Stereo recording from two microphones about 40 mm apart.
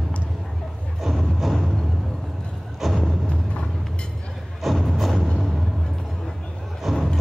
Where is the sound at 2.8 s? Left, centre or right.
Centre.